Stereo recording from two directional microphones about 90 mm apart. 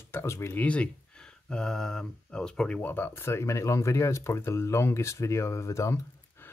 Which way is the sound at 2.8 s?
25° left (ahead or behind).